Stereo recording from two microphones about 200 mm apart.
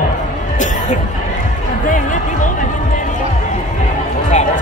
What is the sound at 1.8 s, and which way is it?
Music, 40° left (ahead or behind).